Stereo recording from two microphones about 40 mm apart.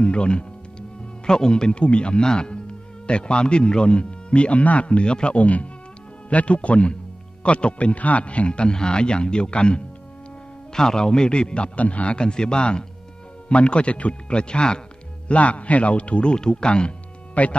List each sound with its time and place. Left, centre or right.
0.0 s a man's voice: left
10.7 s speech: centre
15.2 s a man's voice: left
17.3 s music: left